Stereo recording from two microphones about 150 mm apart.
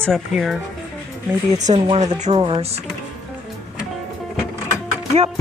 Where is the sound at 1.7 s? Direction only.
35° right (ahead or behind).